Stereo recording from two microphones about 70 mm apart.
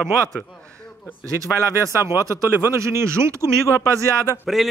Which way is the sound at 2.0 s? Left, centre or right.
Right.